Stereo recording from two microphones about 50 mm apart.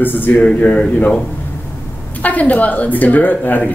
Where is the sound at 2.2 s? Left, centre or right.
Left.